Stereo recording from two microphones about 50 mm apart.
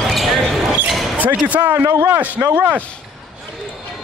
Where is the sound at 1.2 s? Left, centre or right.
Right.